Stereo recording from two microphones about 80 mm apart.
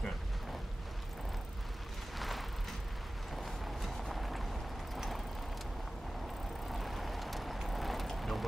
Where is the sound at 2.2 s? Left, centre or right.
Centre.